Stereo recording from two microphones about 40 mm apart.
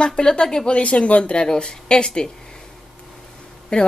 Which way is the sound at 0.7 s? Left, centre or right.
Left.